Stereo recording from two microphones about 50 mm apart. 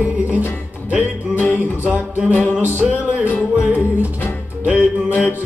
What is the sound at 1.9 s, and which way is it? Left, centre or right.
Music, right.